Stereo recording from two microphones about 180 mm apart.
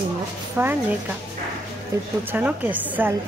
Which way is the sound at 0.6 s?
10° right (ahead or behind).